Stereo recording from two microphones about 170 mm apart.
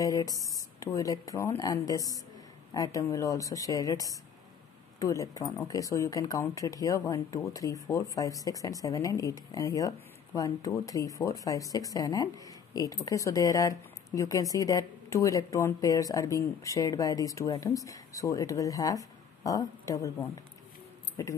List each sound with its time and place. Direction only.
0.0 s speech: 20° left (ahead or behind)